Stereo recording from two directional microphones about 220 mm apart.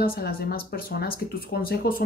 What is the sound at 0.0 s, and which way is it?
Speech, 45° left (ahead or behind).